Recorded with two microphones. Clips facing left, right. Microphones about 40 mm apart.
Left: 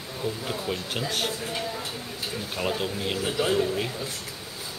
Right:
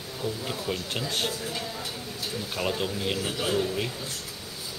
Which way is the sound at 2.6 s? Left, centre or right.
Centre.